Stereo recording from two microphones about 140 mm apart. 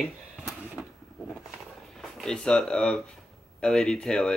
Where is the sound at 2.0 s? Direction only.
5° left (ahead or behind).